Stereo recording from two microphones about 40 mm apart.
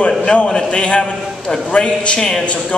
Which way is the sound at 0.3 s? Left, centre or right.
Left.